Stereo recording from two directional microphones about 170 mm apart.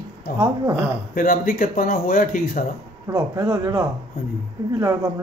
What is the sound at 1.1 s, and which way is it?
Speech, 55° left (ahead or behind).